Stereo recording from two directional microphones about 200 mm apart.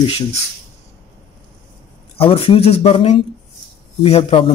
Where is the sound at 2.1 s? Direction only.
30° left (ahead or behind).